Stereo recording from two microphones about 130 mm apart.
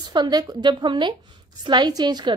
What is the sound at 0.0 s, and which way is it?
A woman's voice, 35° right (ahead or behind).